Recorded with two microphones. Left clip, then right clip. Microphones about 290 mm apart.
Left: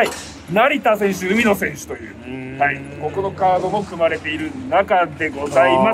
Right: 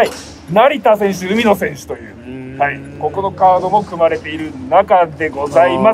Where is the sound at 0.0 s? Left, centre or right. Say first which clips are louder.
Right 4 dB; right.